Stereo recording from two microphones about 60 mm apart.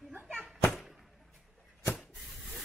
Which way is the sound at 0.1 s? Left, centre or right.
Right.